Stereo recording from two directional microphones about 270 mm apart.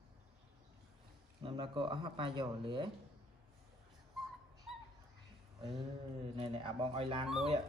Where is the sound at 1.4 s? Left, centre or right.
Centre.